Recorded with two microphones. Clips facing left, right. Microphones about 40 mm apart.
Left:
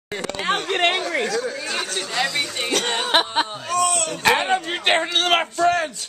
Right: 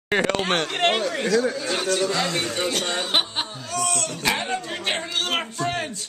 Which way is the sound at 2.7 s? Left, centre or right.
Left.